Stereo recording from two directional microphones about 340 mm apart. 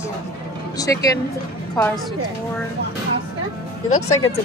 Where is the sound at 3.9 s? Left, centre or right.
Left.